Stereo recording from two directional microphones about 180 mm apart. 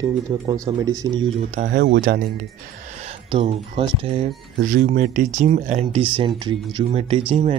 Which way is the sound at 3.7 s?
35° right (ahead or behind).